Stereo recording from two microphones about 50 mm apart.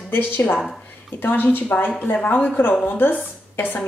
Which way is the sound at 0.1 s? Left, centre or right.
Left.